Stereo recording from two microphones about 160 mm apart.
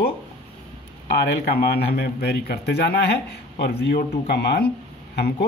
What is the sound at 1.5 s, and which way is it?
A man's voice, 85° left.